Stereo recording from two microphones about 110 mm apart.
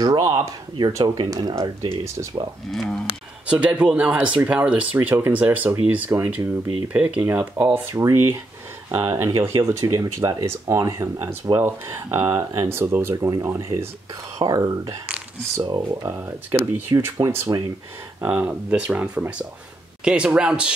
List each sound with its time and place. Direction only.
0.0 s speech: 35° right (ahead or behind)
2.7 s speech: 5° left (ahead or behind)
3.4 s speech: 10° right (ahead or behind)
18.2 s speech: 10° right (ahead or behind)